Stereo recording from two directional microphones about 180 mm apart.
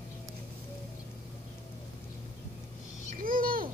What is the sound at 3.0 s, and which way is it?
Owl, 50° right (ahead or behind).